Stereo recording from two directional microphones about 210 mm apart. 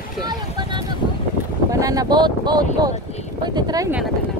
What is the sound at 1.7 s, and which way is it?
Speech, 15° right (ahead or behind).